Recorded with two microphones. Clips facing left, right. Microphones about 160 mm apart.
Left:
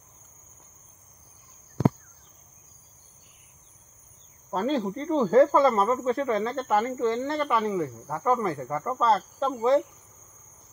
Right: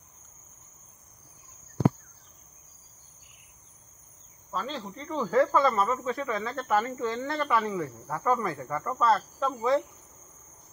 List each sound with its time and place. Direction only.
4.5 s speech: 45° left (ahead or behind)
4.8 s speech: 30° left (ahead or behind)